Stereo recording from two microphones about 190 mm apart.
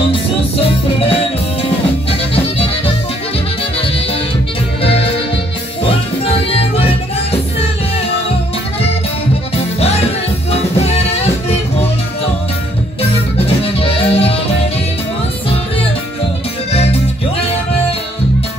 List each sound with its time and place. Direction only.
0.1 s music: 30° left (ahead or behind)
4.8 s music: 30° left (ahead or behind)
6.2 s music: 30° left (ahead or behind)
9.8 s music: 35° left (ahead or behind)
13.7 s music: 30° left (ahead or behind)